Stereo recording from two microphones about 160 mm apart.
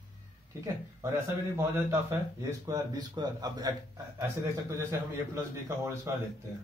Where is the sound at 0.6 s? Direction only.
15° right (ahead or behind).